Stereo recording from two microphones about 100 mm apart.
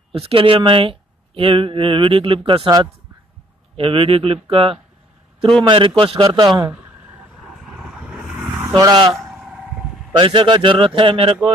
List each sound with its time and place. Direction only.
0.1 s speech: 70° right (ahead or behind)
3.7 s speech: 70° right (ahead or behind)
5.6 s a man's voice: 55° right (ahead or behind)
8.8 s a man's voice: 50° right (ahead or behind)
9.1 s vehicle: centre (ahead or behind)
10.1 s speech: 55° right (ahead or behind)
11.0 s speech: 65° right (ahead or behind)